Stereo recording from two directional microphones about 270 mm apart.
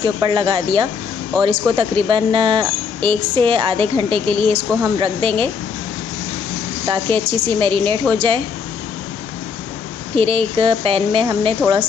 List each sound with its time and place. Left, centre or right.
0.0 s a woman's voice: centre
6.9 s a woman's voice: centre
10.1 s a woman's voice: centre